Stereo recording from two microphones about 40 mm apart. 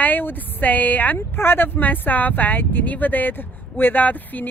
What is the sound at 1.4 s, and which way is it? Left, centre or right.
Speech, left.